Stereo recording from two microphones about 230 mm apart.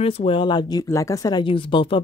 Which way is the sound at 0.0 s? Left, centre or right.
Left.